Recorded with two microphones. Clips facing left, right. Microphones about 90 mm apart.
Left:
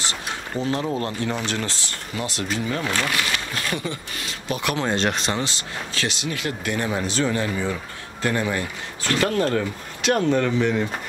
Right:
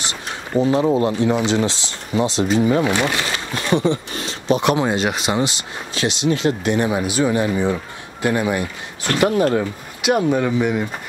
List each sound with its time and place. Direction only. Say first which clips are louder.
0.5 s speech: right 9 dB; 15° right (ahead or behind)
4.8 s speech: right 3 dB; 5° right (ahead or behind)